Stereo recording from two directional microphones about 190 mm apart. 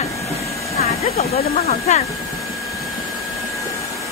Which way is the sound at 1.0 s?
35° left (ahead or behind).